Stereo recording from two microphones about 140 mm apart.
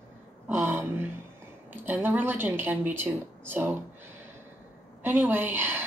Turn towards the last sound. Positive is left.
turn(degrees=-15)  # may be behind; listen again after turning